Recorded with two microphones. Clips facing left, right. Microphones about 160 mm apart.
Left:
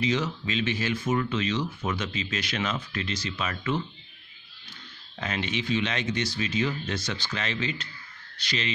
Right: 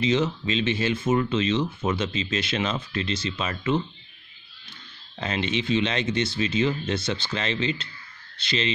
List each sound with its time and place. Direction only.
0.0 s speech: 25° right (ahead or behind)
5.2 s speech: 30° right (ahead or behind)